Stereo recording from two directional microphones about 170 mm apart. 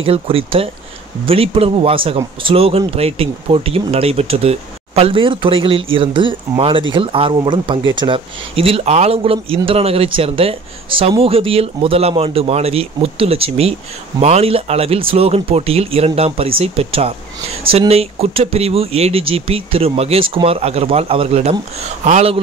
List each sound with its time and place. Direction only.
0.0 s speech: 35° right (ahead or behind)